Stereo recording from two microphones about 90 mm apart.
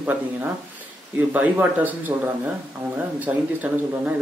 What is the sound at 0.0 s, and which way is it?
Speech, 20° right (ahead or behind).